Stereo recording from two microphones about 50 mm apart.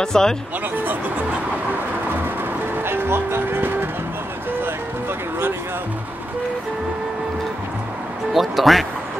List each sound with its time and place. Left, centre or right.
0.0 s speech: centre
2.8 s music: right
8.3 s speech: centre